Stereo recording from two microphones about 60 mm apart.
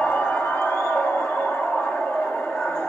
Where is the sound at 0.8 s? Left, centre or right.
Left.